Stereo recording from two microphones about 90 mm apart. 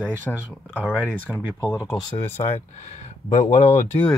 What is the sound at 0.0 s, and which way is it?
Speech, 15° right (ahead or behind).